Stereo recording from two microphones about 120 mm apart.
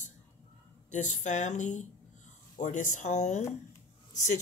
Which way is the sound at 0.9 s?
90° left.